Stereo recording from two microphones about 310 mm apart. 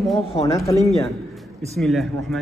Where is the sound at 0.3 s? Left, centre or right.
Centre.